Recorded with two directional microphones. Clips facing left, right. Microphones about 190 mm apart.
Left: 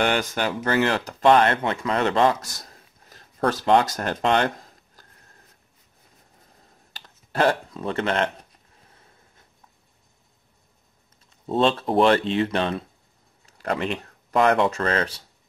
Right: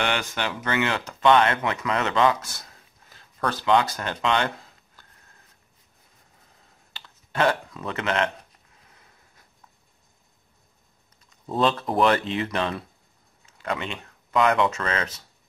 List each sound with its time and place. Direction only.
0.0 s speech: 40° left (ahead or behind)
6.9 s computer keyboard: 40° left (ahead or behind)
11.2 s speech: 30° left (ahead or behind)
13.5 s a sound: 40° left (ahead or behind)
14.6 s speech: 35° left (ahead or behind)